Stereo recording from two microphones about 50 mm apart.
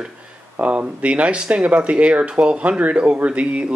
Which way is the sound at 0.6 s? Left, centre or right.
Right.